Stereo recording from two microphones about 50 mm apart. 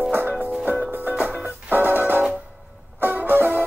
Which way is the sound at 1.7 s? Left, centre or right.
Right.